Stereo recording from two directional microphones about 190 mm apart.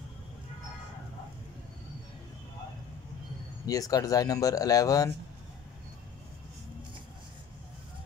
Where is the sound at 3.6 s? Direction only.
20° left (ahead or behind).